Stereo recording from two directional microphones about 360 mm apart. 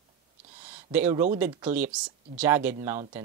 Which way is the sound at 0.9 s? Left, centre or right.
Centre.